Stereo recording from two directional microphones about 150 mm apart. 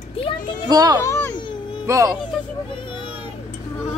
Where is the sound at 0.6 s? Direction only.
25° right (ahead or behind).